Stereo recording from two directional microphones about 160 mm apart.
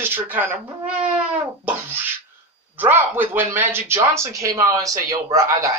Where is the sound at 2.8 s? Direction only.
10° right (ahead or behind).